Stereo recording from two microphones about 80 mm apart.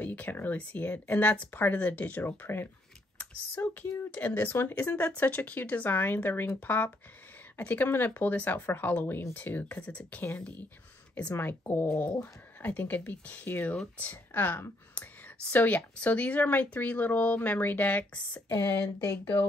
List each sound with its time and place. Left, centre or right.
0.0 s speech: centre
11.3 s speech: left
18.5 s speech: left